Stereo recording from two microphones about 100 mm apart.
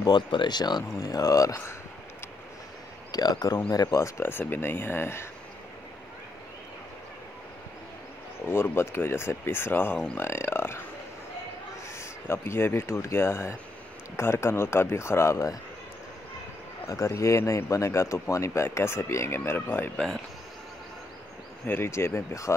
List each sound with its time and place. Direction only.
0.0 s speech: 50° left (ahead or behind); by 1.8 s 35° left (ahead or behind)
3.1 s speech: 40° left (ahead or behind); by 5.3 s 25° left (ahead or behind)
8.5 s speech: 25° left (ahead or behind)
11.9 s speech: 25° left (ahead or behind)
16.8 s speech: 30° left (ahead or behind)
21.6 s speech: 20° left (ahead or behind)